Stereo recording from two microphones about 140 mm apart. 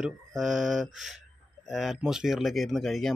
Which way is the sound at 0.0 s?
5° right (ahead or behind).